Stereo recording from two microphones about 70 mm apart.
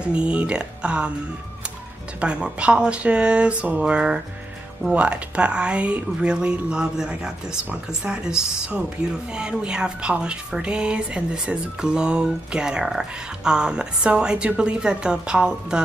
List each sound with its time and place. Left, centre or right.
0.0 s speech: centre
2.1 s speech: centre